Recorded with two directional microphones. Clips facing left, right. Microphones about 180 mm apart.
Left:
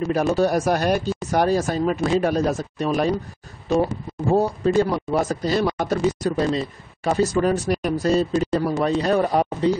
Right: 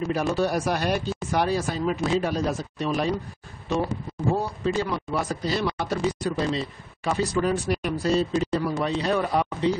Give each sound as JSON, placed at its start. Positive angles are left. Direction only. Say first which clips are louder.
{"t": 0.1, "sound": "speech", "louder": "left 5 dB", "side_deg": 40}